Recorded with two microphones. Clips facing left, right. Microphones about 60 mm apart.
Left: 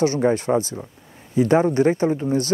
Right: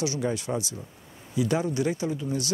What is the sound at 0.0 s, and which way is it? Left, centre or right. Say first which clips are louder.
Speech: left 9 dB; left.